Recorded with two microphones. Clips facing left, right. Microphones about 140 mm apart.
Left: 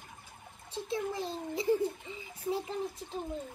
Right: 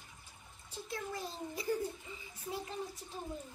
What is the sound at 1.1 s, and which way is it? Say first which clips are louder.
Giggle: left 6 dB; 25° left (ahead or behind).